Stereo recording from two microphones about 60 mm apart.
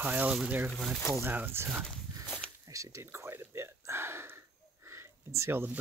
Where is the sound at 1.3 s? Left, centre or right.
Right.